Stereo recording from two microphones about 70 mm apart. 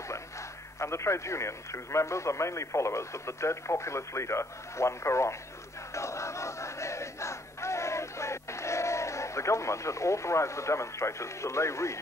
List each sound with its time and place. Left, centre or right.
0.7 s a man's voice: left
5.9 s battle cry: left